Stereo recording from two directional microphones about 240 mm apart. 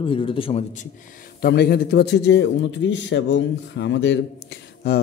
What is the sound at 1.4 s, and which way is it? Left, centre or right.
A man's voice, left.